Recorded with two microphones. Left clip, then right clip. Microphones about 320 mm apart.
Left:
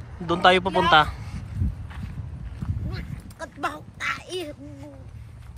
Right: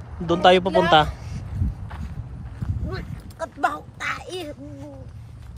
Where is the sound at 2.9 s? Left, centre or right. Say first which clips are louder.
Right 5 dB; right.